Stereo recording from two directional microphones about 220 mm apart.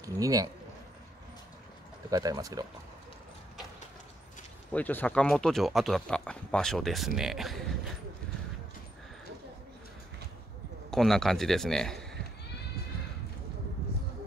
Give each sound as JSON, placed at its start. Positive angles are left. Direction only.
{"t": 0.0, "sound": "speech", "side_deg": -15}
{"t": 2.0, "sound": "speech", "side_deg": -15}
{"t": 4.7, "sound": "speech", "side_deg": 5}
{"t": 10.9, "sound": "a man's voice", "side_deg": 0}